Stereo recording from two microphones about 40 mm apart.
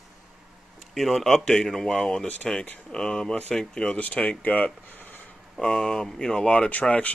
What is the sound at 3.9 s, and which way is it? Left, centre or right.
Speech, left.